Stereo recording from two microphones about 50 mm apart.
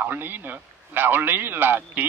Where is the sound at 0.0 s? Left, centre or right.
Right.